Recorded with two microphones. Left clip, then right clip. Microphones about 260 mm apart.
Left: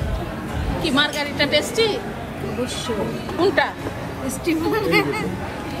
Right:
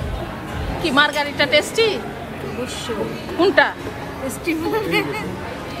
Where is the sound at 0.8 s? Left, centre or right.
Right.